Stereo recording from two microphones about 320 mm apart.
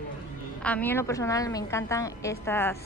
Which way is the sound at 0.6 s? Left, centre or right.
Centre.